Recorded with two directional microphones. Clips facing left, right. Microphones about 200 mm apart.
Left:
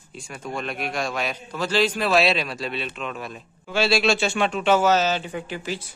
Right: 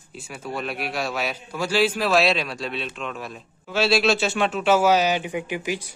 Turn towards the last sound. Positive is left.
turn(degrees=-15)  # may be behind; listen again after turning